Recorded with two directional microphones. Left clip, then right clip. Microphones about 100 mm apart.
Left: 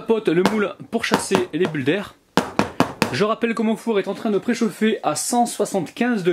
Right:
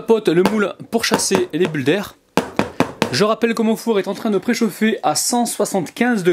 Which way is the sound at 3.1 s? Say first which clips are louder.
Right 4 dB; 30° right (ahead or behind).